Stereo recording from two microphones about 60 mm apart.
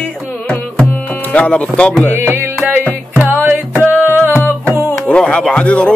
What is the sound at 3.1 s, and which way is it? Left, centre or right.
Music, right.